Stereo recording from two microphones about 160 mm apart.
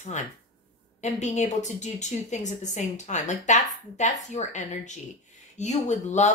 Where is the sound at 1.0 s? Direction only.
45° left (ahead or behind).